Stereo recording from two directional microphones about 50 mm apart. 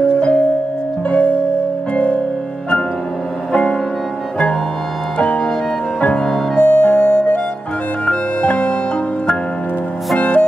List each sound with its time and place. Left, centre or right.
0.2 s music: left
5.9 s music: left
6.5 s music: left
8.0 s music: left
10.1 s music: left